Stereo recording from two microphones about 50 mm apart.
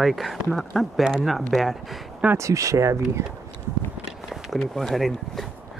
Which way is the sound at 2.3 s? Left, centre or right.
Right.